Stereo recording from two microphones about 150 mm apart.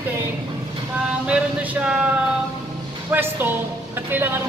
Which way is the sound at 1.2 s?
10° right (ahead or behind).